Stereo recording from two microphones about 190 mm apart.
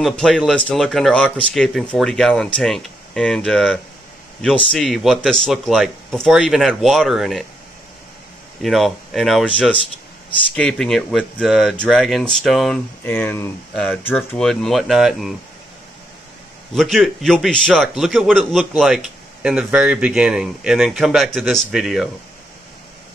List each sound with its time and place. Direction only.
0.0 s a man's voice: 5° left (ahead or behind)
8.6 s a man's voice: centre (ahead or behind)
16.7 s a man's voice: centre (ahead or behind)